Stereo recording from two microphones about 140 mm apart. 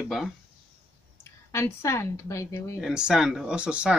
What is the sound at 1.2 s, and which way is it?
Speech, 20° left (ahead or behind).